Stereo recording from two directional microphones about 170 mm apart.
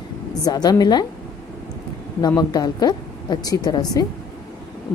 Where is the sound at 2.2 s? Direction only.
20° left (ahead or behind).